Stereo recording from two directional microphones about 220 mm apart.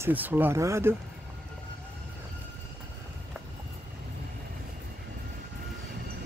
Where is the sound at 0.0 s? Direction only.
10° right (ahead or behind).